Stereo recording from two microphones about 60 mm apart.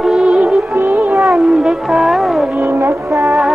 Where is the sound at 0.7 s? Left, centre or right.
Right.